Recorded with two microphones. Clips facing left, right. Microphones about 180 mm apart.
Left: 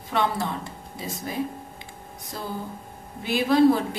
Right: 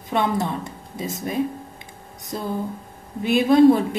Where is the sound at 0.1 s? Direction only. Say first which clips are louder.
Right 3 dB; 20° right (ahead or behind).